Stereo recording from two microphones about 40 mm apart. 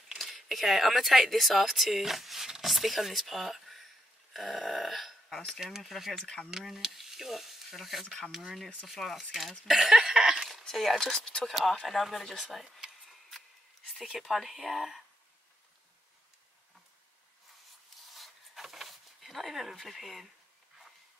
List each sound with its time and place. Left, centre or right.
0.2 s speech: centre
4.3 s a sound: centre
5.6 s speech: centre
6.2 s speech: left
6.9 s speech: centre
9.8 s a sound: centre
10.7 s speech: centre
11.1 s speech: left
11.4 s speech: centre
14.2 s speech: centre
18.1 s a sound: centre
19.7 s speech: centre